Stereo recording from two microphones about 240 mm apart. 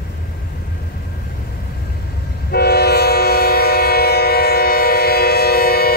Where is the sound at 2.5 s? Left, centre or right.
Left.